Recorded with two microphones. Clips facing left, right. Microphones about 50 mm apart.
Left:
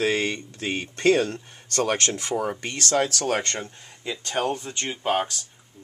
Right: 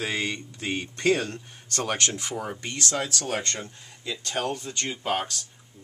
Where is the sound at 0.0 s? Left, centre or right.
Left.